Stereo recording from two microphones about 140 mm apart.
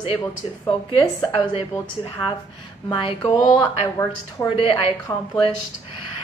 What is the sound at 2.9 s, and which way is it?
A woman's voice, 35° left (ahead or behind).